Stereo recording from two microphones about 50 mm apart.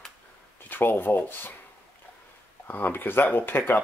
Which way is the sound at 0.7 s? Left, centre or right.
Left.